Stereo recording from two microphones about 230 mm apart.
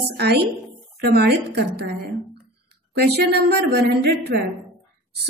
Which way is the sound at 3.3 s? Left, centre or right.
Right.